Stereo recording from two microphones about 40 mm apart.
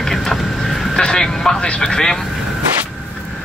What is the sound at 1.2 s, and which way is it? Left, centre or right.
Speech, centre.